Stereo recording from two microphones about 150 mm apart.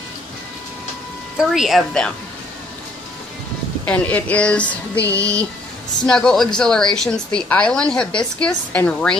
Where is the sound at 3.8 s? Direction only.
10° left (ahead or behind).